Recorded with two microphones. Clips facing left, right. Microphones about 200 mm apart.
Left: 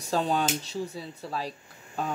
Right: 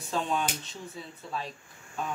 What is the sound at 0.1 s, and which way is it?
Speech, 35° left (ahead or behind).